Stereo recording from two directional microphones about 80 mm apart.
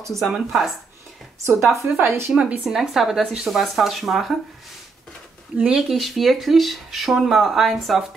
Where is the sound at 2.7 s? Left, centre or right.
Centre.